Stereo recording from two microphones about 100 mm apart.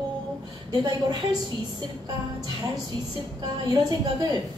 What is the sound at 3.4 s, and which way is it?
Speech, 40° right (ahead or behind).